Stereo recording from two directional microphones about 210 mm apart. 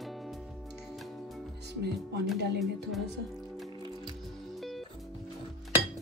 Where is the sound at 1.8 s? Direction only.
50° right (ahead or behind).